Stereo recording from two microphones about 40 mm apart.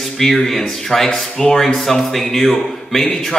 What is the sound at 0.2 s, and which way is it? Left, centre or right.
Speech, centre.